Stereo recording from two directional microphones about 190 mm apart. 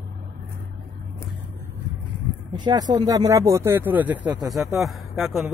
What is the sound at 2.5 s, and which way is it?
Speech, 20° right (ahead or behind).